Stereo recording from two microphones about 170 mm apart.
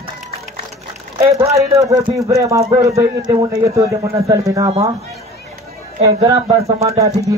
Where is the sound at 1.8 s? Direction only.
20° right (ahead or behind).